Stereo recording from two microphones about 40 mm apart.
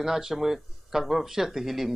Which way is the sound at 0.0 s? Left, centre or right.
Centre.